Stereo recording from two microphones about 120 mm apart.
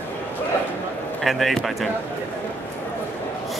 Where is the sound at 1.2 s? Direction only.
Centre (ahead or behind).